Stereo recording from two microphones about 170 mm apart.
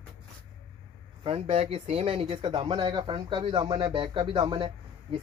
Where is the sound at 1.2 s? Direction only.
35° right (ahead or behind).